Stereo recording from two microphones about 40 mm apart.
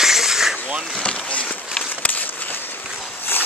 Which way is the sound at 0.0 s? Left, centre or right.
Centre.